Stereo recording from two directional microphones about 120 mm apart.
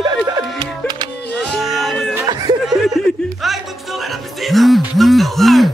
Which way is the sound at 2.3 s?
35° right (ahead or behind).